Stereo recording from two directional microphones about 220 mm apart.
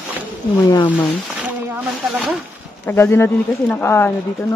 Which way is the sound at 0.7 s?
20° left (ahead or behind).